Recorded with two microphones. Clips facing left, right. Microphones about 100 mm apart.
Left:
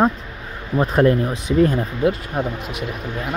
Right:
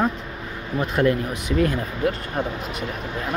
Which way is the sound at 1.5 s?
20° left (ahead or behind).